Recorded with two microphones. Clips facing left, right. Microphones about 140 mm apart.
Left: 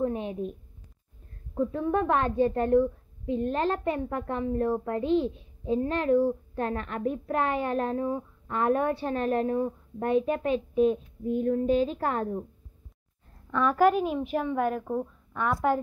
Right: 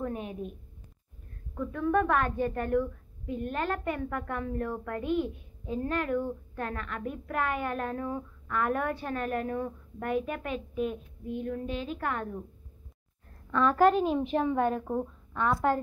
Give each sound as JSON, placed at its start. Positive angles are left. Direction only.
{"t": 0.0, "sound": "a sound", "side_deg": 25}
{"t": 1.5, "sound": "a woman's voice", "side_deg": 30}
{"t": 13.5, "sound": "a woman's voice", "side_deg": 10}